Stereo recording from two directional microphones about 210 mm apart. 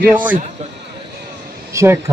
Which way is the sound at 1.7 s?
15° right (ahead or behind).